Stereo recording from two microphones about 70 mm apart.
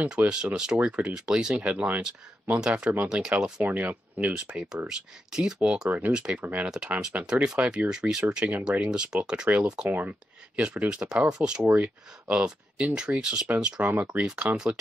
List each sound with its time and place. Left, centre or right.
0.0 s speech: centre
3.6 s speech: right
4.8 s speech: centre
6.1 s speech: centre